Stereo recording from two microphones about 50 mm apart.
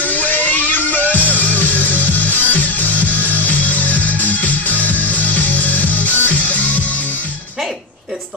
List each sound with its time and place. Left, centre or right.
0.0 s music: left